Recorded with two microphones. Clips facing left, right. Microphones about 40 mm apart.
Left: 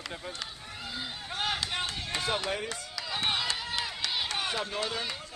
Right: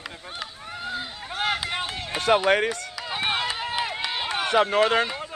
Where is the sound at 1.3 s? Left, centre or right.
Right.